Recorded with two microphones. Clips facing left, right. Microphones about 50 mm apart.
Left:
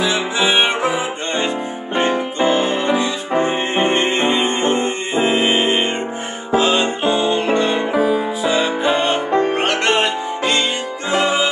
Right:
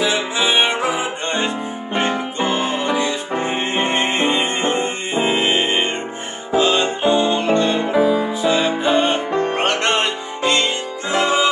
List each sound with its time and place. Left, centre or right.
0.0 s music: centre
7.9 s music: left
8.5 s music: centre